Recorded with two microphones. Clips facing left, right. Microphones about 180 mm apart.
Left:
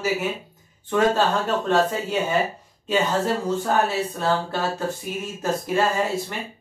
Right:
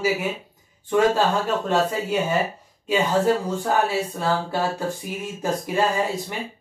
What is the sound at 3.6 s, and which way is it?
Speech, 10° right (ahead or behind).